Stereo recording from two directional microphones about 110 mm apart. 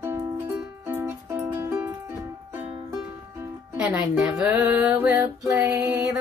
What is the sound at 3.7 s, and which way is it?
Speech, 10° right (ahead or behind).